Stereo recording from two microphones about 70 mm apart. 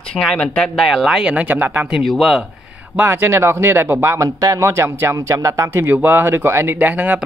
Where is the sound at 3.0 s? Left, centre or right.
Right.